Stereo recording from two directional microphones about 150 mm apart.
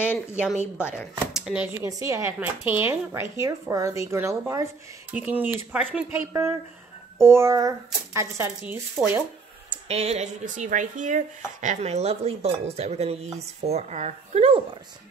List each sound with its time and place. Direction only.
0.0 s speech: 15° left (ahead or behind)
0.7 s speech: 5° right (ahead or behind)
1.8 s speech: 20° right (ahead or behind)
7.2 s speech: 15° right (ahead or behind)
9.8 s speech: 45° right (ahead or behind)